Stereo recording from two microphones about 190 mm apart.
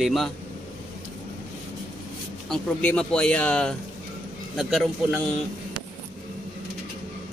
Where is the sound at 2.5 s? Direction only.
5° left (ahead or behind).